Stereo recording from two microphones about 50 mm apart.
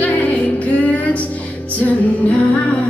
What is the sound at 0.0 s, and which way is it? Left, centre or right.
Music, left.